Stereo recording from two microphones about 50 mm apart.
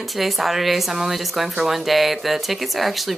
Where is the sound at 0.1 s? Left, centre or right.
Centre.